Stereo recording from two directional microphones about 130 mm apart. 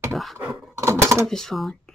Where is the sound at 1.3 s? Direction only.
5° left (ahead or behind).